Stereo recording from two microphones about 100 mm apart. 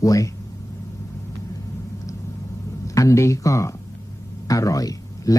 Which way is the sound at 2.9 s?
35° left (ahead or behind).